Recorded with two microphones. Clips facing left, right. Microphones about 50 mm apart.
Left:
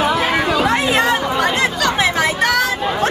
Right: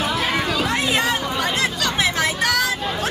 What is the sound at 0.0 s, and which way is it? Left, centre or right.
Chatter, centre.